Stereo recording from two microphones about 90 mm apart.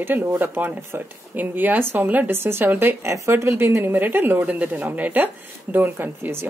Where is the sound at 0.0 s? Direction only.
20° right (ahead or behind).